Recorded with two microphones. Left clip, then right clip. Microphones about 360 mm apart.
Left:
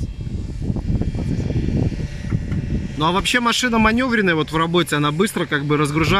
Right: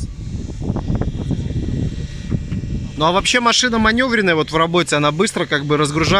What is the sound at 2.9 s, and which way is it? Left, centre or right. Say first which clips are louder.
Speech: right 3 dB; centre.